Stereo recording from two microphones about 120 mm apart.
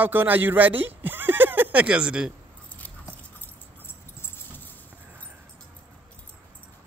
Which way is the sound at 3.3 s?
15° left (ahead or behind).